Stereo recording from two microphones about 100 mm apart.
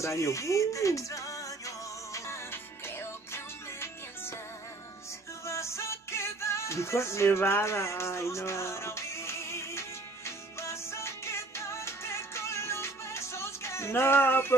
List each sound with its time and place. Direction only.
0.0 s speech: 30° left (ahead or behind)
2.1 s music: 30° left (ahead or behind)
5.4 s music: 30° left (ahead or behind)